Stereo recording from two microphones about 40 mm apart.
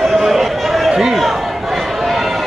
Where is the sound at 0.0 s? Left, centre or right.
Centre.